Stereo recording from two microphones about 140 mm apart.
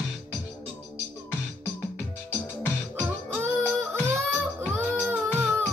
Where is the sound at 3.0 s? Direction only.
15° right (ahead or behind).